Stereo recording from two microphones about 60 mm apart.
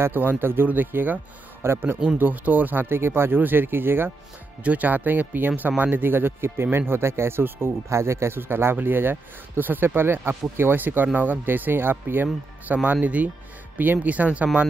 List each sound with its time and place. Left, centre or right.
0.0 s speech: right
1.6 s speech: right
2.1 s speech: right
7.9 s speech: right